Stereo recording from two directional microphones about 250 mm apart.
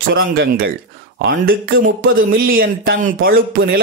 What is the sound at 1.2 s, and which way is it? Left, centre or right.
Speech, right.